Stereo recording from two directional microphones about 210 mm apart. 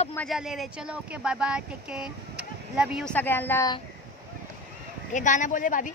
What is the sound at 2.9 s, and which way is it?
Speech, 5° left (ahead or behind).